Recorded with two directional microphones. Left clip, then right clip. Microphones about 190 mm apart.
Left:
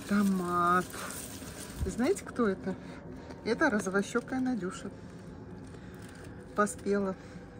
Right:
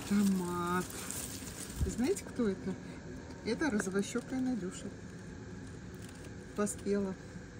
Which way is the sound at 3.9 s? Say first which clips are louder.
Left 5 dB; 25° left (ahead or behind).